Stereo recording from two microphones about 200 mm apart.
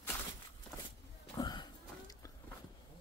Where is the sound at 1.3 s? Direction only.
20° left (ahead or behind).